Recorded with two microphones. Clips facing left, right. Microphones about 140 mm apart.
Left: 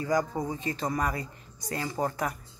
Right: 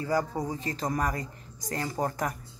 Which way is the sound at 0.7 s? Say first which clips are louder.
Even; 40° right (ahead or behind).